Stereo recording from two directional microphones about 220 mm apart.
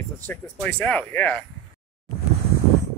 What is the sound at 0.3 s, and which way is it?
Speech, 5° left (ahead or behind).